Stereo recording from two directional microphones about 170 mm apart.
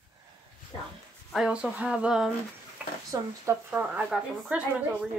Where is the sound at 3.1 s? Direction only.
15° right (ahead or behind).